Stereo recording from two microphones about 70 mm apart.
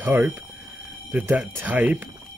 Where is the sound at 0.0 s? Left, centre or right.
Right.